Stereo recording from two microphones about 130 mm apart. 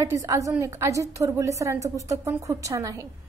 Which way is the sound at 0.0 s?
25° right (ahead or behind).